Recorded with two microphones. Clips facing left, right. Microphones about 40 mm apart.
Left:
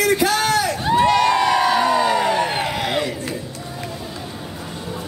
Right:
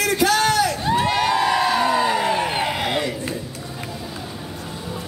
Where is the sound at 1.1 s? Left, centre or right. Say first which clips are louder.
Left 3 dB; centre.